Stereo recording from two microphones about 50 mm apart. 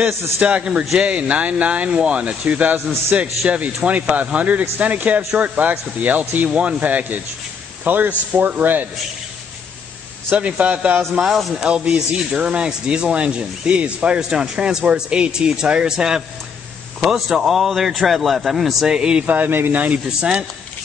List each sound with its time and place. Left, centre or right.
0.4 s a man's voice: right
10.3 s speech: right
11.2 s a man's voice: centre
11.5 s a man's voice: centre
18.9 s speech: centre
19.2 s speech: right